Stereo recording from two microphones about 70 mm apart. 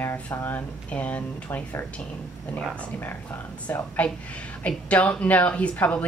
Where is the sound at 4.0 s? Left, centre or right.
Centre.